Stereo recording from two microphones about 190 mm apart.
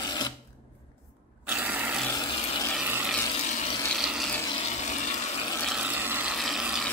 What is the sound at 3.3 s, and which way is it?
Water, 35° left (ahead or behind).